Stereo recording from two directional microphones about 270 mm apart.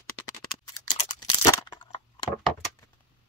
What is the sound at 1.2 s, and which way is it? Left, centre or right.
Crushing, centre.